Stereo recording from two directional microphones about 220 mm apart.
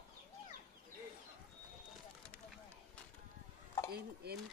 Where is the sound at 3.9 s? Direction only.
45° right (ahead or behind).